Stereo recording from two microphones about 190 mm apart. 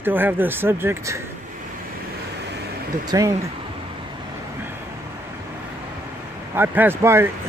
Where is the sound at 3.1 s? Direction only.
20° right (ahead or behind).